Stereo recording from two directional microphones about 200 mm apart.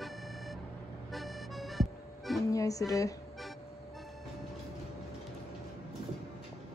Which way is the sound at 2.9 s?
15° left (ahead or behind).